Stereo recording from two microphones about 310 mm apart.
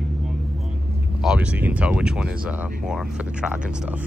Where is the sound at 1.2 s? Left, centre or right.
Centre.